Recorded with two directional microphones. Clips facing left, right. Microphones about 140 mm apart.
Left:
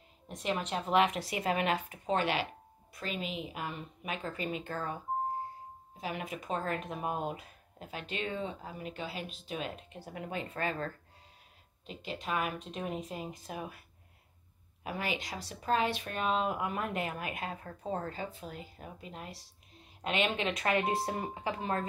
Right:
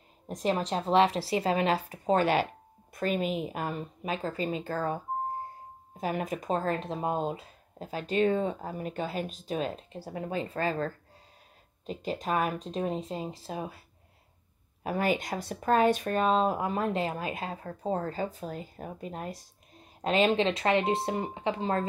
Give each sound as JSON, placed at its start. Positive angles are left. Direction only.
{"t": 0.3, "sound": "speech", "side_deg": -35}
{"t": 14.8, "sound": "speech", "side_deg": -45}